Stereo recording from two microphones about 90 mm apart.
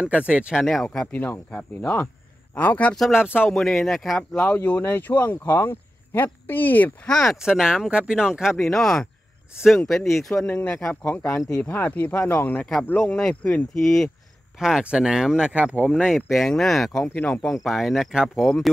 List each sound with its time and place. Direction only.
0.0 s speech: 15° right (ahead or behind)
0.6 s speech: centre (ahead or behind)
0.8 s speech: 15° left (ahead or behind)
3.0 s speech: 5° right (ahead or behind)
3.4 s speech: 5° left (ahead or behind)
4.4 s speech: 20° left (ahead or behind)
7.1 s speech: 5° left (ahead or behind)
7.4 s speech: 5° right (ahead or behind)
8.6 s speech: 5° left (ahead or behind)
10.4 s speech: 15° left (ahead or behind)
12.5 s speech: 5° left (ahead or behind)
14.6 s speech: 10° right (ahead or behind)
18.4 s speech: 5° left (ahead or behind)